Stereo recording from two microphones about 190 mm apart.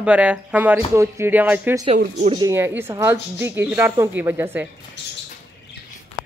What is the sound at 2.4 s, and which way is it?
Speech, 15° right (ahead or behind).